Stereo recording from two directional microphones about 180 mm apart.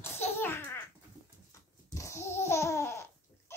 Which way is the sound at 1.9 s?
15° left (ahead or behind).